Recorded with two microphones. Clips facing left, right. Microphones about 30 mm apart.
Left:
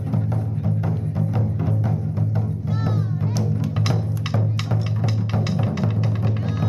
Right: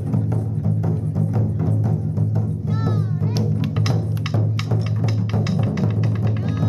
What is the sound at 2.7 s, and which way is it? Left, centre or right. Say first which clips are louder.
Music: right 1 dB; centre.